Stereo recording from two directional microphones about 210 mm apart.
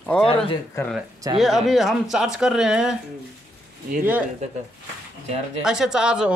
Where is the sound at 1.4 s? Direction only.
Centre (ahead or behind).